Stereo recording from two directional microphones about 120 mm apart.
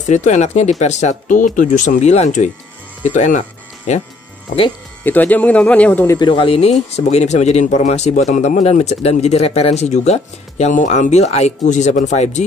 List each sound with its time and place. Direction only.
0.0 s speech: 85° left
5.0 s speech: 15° left (ahead or behind)
6.1 s speech: 45° left (ahead or behind)
6.7 s speech: 70° left (ahead or behind)